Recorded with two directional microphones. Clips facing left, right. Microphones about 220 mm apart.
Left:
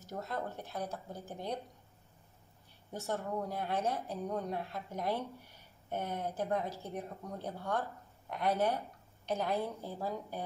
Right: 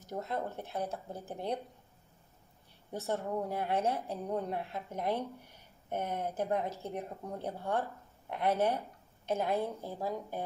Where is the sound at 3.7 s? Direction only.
30° right (ahead or behind).